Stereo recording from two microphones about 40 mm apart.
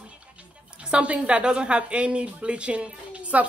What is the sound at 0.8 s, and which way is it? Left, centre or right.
A woman's voice, right.